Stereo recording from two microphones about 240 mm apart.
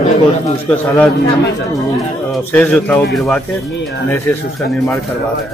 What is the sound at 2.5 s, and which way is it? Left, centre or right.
Speech, centre.